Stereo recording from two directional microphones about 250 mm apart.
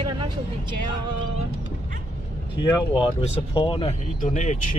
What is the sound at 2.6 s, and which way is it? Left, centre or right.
Speech, left.